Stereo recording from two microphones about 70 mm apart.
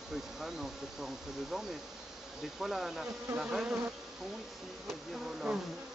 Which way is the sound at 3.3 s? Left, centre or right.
Centre.